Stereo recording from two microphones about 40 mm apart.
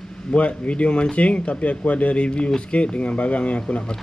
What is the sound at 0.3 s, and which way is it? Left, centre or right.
A man's voice, left.